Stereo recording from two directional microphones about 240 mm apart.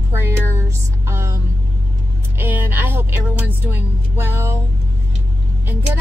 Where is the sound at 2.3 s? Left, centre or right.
Centre.